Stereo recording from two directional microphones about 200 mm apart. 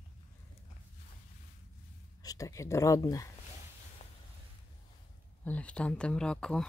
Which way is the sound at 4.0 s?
35° left (ahead or behind).